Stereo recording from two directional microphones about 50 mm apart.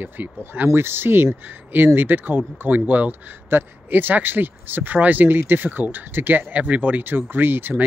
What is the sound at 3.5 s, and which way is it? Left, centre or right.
Speech, right.